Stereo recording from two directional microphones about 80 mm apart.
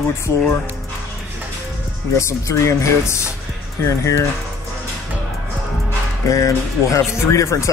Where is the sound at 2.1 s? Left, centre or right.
Left.